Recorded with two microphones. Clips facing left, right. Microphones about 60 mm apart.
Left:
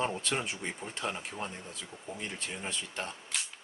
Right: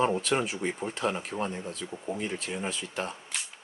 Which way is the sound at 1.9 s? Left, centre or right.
Right.